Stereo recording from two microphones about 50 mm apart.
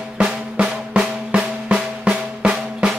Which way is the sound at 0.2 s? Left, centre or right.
Centre.